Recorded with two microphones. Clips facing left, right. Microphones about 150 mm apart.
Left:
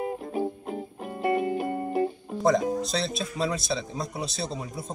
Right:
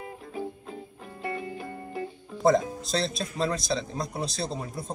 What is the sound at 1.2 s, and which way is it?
Music, 25° left (ahead or behind).